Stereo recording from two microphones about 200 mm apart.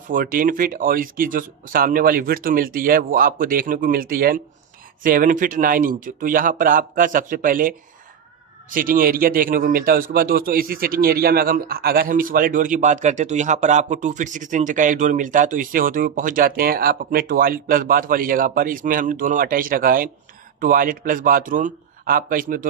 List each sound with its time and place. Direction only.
0.1 s a man's voice: 45° right (ahead or behind)